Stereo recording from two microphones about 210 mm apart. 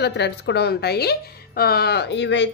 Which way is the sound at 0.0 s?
55° left (ahead or behind).